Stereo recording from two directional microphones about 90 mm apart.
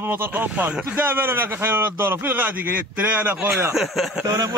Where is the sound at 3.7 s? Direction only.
Centre (ahead or behind).